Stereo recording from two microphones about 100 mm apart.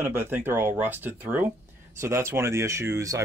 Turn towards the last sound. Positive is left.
turn(degrees=-30)  # may be behind; listen again after turning